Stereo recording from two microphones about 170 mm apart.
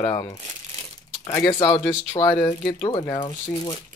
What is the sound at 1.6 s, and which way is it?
Speech, 20° left (ahead or behind).